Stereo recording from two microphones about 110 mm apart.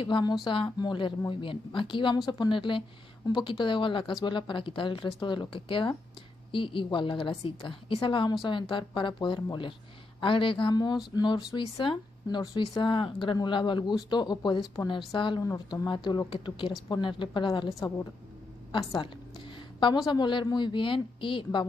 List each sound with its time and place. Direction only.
0.0 s a woman's voice: 45° left (ahead or behind)
15.4 s a woman's voice: 35° left (ahead or behind)
17.7 s a woman's voice: 30° left (ahead or behind)
18.7 s a woman's voice: 45° left (ahead or behind)
20.1 s a woman's voice: 45° left (ahead or behind)